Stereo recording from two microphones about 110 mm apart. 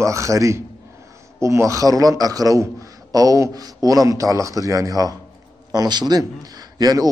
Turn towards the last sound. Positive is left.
turn(degrees=-35)  # may be behind; listen again after turning